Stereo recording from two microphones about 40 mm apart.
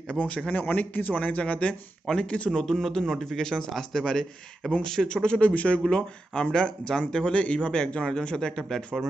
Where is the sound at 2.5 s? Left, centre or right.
Centre.